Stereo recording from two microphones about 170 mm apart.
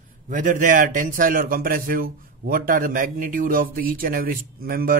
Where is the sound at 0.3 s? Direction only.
50° right (ahead or behind).